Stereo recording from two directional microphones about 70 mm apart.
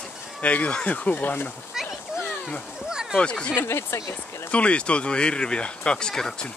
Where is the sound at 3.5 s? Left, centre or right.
Left.